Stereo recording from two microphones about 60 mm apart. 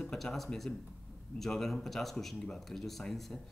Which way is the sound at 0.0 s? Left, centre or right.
Centre.